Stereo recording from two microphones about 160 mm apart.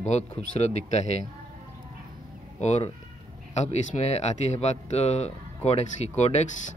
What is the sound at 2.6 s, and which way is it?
Speech, 45° left (ahead or behind).